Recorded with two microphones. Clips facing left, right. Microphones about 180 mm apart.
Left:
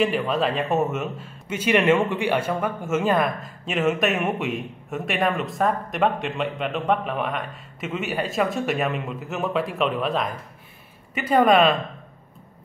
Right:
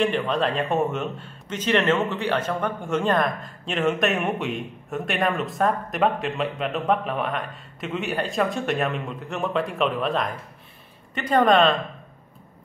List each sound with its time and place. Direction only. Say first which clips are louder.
0.0 s a man's voice: left 1 dB; 5° left (ahead or behind)